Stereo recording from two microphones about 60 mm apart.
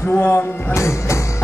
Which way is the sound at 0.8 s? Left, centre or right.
Left.